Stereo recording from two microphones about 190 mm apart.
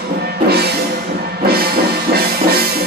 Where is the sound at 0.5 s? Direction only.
60° right (ahead or behind).